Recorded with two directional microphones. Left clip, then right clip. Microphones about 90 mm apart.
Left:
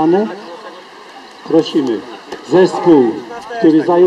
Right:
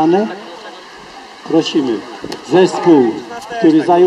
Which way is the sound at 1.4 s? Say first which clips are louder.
Left 1 dB; 25° right (ahead or behind).